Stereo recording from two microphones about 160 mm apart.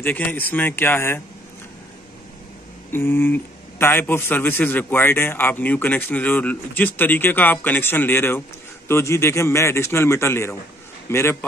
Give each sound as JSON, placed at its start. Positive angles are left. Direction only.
{"t": 0.0, "sound": "a man's voice", "side_deg": 10}
{"t": 2.9, "sound": "a man's voice", "side_deg": 15}